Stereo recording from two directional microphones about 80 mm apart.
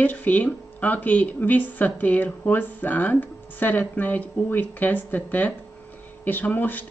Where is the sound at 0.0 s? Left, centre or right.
Left.